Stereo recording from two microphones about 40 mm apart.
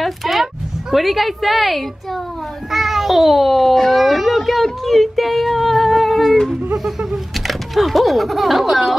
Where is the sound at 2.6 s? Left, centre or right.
Centre.